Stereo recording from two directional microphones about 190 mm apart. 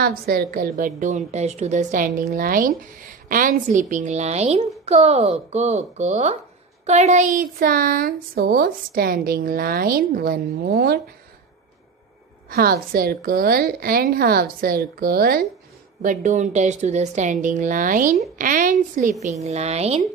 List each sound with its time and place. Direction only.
0.0 s a woman's voice: 55° right (ahead or behind)
12.4 s a woman's voice: 50° right (ahead or behind)
19.4 s a woman's voice: 35° right (ahead or behind)